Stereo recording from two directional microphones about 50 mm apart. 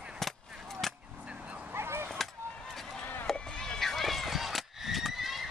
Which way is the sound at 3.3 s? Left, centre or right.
Centre.